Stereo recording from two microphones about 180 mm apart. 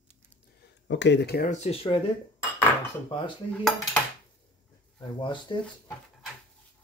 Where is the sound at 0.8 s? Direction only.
80° left; by 1.5 s 60° left (ahead or behind).